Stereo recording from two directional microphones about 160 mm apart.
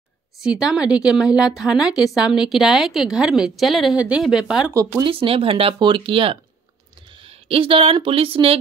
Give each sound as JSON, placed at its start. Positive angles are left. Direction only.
{"t": 0.4, "sound": "a woman's voice", "side_deg": -5}
{"t": 5.0, "sound": "speech", "side_deg": -35}